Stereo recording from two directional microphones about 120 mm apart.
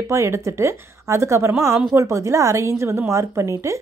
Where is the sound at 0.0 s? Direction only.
25° right (ahead or behind).